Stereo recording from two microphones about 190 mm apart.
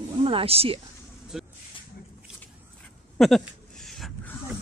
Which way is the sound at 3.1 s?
Centre (ahead or behind).